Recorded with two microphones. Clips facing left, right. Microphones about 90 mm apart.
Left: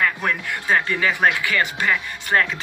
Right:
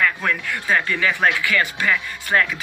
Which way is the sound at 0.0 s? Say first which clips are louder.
Right 1 dB; 25° left (ahead or behind).